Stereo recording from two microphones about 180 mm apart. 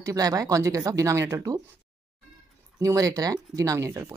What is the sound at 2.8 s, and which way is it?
Speech, 20° right (ahead or behind).